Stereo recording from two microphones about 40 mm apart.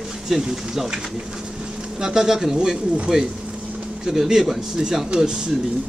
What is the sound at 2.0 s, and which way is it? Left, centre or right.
A man's voice, centre.